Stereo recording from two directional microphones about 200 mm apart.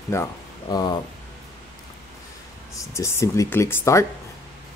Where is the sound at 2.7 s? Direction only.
15° left (ahead or behind).